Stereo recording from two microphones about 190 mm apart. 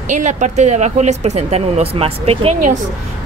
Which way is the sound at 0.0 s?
40° right (ahead or behind).